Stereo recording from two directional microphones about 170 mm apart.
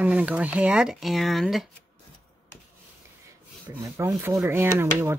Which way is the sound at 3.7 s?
15° right (ahead or behind).